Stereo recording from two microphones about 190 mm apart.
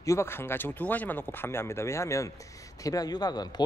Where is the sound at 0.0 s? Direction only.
15° left (ahead or behind).